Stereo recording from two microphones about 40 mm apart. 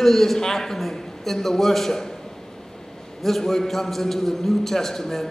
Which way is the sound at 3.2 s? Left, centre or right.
Centre.